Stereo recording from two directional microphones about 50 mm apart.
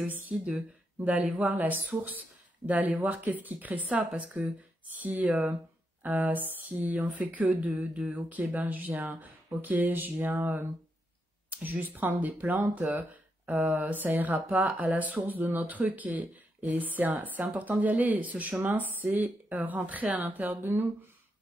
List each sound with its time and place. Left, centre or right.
0.0 s speech: right
11.6 s speech: right